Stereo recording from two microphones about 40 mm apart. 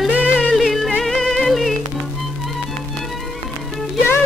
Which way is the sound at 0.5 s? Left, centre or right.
Centre.